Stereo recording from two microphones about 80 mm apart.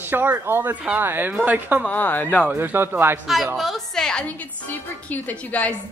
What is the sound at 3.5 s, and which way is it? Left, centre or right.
A woman's voice, centre.